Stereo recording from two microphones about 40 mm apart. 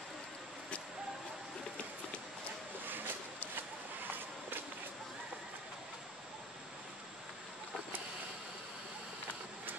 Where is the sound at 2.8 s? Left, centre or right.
Right.